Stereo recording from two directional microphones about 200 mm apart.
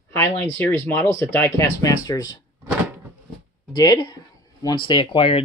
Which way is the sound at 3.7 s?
20° left (ahead or behind).